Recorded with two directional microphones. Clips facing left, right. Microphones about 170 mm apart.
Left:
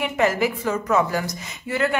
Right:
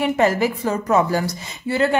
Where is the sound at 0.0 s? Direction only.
35° right (ahead or behind).